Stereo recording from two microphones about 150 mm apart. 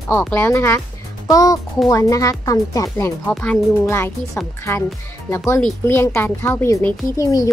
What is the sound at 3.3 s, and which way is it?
A woman's voice, 10° left (ahead or behind).